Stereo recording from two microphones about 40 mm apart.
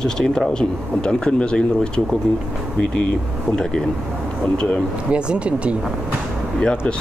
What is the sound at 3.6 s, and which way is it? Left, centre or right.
Speech, centre.